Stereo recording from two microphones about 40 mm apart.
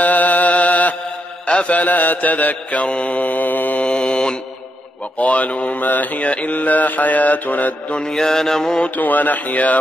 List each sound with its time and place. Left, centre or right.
0.0 s mantra: left
4.0 s mantra: left
5.2 s mantra: left
7.9 s mantra: centre
8.8 s mantra: left